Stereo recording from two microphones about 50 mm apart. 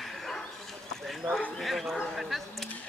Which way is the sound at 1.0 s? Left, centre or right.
Centre.